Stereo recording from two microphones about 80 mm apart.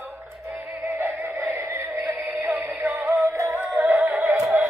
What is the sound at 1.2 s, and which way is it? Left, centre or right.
Synthetic singing, right.